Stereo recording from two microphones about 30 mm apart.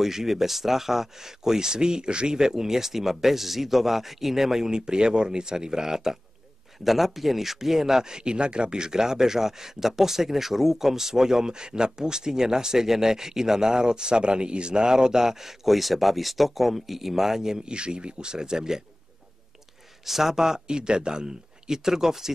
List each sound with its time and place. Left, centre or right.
0.0 s speech: centre
4.6 s speech: right
6.8 s speech: centre
17.6 s speech: right
20.1 s speech: centre
20.6 s speech: right